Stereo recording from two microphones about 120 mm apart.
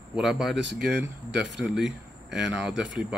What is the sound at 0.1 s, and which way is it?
Speech, 5° right (ahead or behind).